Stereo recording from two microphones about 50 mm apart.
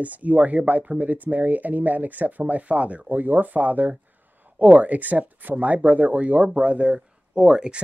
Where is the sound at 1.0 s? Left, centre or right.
Right.